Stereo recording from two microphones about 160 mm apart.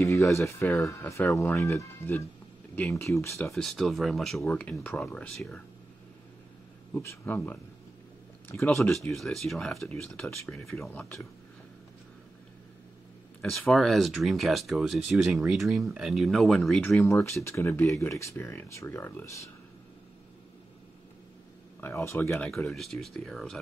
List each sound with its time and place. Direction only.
0.0 s speech: 20° left (ahead or behind)
3.5 s speech: centre (ahead or behind)
6.9 s speech: 15° left (ahead or behind)
8.6 s speech: centre (ahead or behind)
13.4 s speech: 5° left (ahead or behind)
17.0 s speech: 15° left (ahead or behind)
21.8 s speech: 15° left (ahead or behind)
22.7 s speech: centre (ahead or behind)